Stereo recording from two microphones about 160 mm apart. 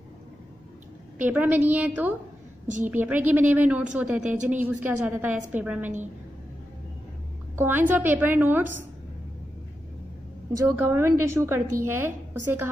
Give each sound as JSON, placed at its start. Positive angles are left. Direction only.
{"t": 1.2, "sound": "a woman's voice", "side_deg": -10}
{"t": 7.5, "sound": "a woman's voice", "side_deg": -15}
{"t": 10.6, "sound": "a woman's voice", "side_deg": -15}